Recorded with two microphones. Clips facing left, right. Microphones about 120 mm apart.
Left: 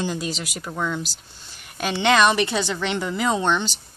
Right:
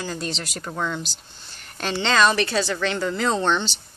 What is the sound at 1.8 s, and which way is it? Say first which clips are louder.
A woman's voice: left 2 dB; 15° left (ahead or behind).